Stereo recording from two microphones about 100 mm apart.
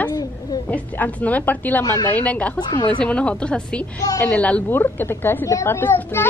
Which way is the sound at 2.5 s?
45° left (ahead or behind).